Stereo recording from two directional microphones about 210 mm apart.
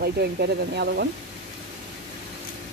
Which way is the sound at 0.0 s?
50° right (ahead or behind).